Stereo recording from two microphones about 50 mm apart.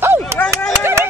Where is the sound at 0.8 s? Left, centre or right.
Right.